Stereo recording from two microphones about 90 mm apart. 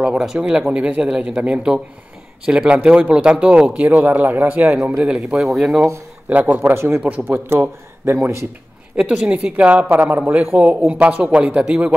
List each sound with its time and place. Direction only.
0.0 s a man's voice: 5° right (ahead or behind)
6.2 s a man's voice: 15° right (ahead or behind)
6.7 s speech: 30° right (ahead or behind)
7.0 s speech: 15° right (ahead or behind)
8.9 s a man's voice: 10° right (ahead or behind)